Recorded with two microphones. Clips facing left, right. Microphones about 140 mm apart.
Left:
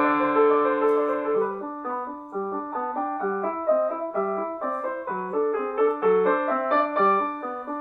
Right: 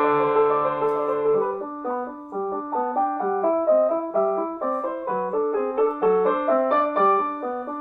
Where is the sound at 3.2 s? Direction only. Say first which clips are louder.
Right 6 dB; 15° right (ahead or behind).